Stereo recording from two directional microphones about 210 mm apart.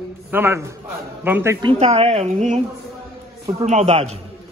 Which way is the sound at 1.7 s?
30° right (ahead or behind).